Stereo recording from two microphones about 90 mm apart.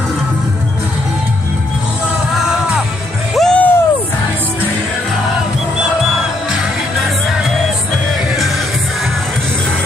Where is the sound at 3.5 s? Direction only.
20° left (ahead or behind).